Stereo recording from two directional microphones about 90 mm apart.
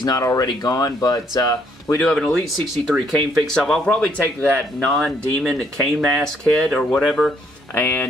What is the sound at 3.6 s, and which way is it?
Speech, 10° left (ahead or behind).